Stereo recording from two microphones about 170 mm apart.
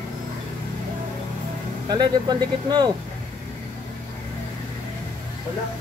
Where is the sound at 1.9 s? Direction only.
25° right (ahead or behind).